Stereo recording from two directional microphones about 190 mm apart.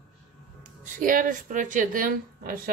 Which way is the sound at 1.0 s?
45° right (ahead or behind).